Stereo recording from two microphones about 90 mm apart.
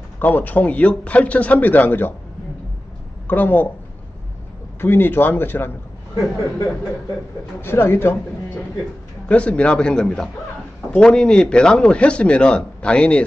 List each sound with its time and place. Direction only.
0.2 s speech: 20° left (ahead or behind)
3.3 s a man's voice: 20° left (ahead or behind)
4.7 s a man's voice: 25° left (ahead or behind)
7.6 s a man's voice: 25° left (ahead or behind)
9.3 s speech: 15° left (ahead or behind)